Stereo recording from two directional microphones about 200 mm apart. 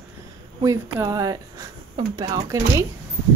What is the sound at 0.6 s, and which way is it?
Speech, 15° right (ahead or behind).